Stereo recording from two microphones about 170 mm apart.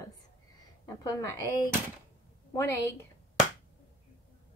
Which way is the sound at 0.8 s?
20° left (ahead or behind).